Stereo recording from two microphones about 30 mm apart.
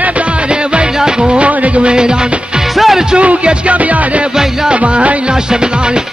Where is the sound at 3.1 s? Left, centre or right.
Right.